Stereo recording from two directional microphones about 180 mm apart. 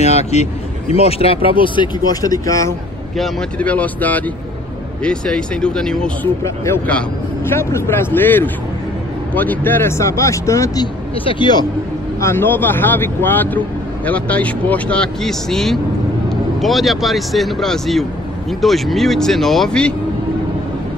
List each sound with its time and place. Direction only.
0.0 s a man's voice: 40° left (ahead or behind); by 2.7 s 20° left (ahead or behind)
3.2 s speech: 5° left (ahead or behind); by 11.6 s 25° left (ahead or behind)
12.2 s speech: 15° left (ahead or behind)